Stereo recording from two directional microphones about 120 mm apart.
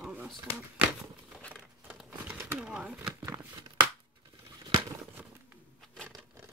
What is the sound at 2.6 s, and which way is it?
Speech, 10° right (ahead or behind).